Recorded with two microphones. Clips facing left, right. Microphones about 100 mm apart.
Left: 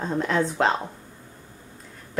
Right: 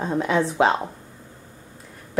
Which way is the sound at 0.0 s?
5° right (ahead or behind).